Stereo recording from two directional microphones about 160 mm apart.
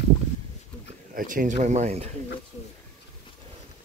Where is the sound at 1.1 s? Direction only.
60° right (ahead or behind).